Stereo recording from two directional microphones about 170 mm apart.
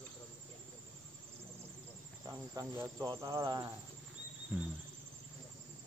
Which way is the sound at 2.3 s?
15° right (ahead or behind).